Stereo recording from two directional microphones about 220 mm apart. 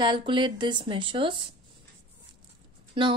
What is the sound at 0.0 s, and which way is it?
A woman's voice, 20° right (ahead or behind).